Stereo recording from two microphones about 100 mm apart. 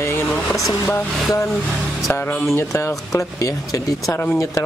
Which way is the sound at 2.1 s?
20° left (ahead or behind).